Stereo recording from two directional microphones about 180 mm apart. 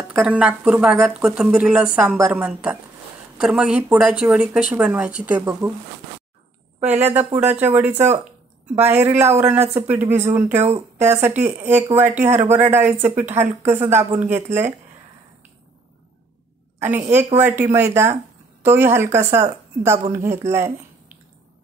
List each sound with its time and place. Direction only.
0.1 s speech: 5° right (ahead or behind)
7.0 s speech: 10° right (ahead or behind)
10.5 s speech: 35° right (ahead or behind)
11.0 s speech: 15° right (ahead or behind)
17.1 s speech: 10° right (ahead or behind)